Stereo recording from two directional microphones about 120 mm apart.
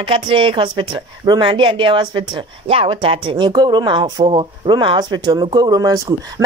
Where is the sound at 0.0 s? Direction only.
45° right (ahead or behind).